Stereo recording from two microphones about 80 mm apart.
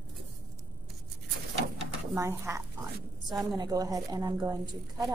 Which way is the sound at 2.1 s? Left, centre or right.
Right.